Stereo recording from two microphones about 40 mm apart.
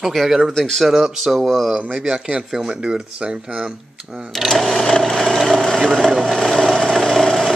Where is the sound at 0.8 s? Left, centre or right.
Centre.